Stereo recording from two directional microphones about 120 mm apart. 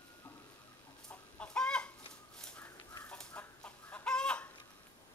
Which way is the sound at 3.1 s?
10° left (ahead or behind).